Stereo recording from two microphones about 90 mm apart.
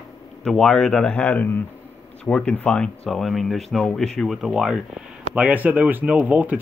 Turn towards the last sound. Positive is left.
turn(degrees=-15)  # may be behind; listen again after turning